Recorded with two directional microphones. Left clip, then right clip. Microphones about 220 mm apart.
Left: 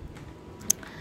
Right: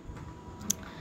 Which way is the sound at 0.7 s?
35° left (ahead or behind).